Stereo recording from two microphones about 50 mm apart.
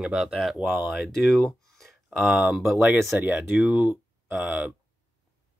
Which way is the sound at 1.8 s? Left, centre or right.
Centre.